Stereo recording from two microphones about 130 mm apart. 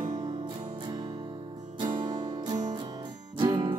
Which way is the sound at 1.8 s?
35° right (ahead or behind).